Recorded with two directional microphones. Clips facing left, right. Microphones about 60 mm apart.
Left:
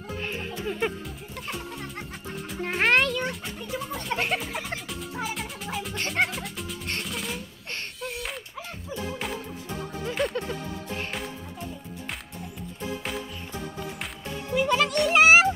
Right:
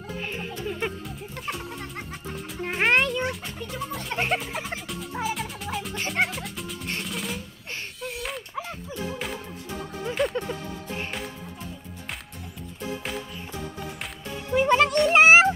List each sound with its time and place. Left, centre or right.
0.2 s music: centre
10.1 s music: centre
14.5 s music: right